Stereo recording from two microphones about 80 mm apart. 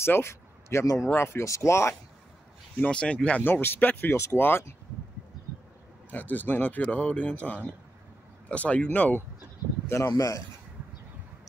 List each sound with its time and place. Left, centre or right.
0.0 s a sound: left
1.1 s speech: left
2.8 s speech: centre
3.4 s speech: left
6.0 s speech: left
9.8 s speech: left